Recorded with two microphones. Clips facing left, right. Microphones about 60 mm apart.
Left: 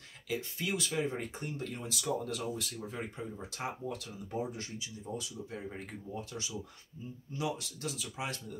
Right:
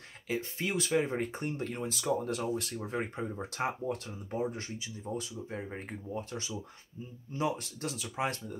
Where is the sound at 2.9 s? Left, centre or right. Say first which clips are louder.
Right 5 dB; right.